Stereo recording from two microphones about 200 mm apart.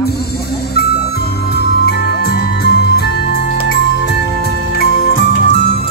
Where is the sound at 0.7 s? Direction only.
55° left (ahead or behind).